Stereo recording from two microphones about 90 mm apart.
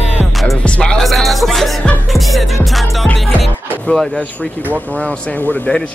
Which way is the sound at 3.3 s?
20° left (ahead or behind).